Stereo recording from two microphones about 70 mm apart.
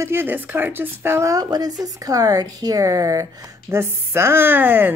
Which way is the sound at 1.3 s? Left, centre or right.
Right.